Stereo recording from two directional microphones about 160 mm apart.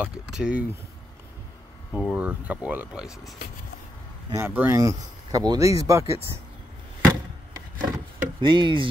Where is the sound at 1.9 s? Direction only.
5° right (ahead or behind).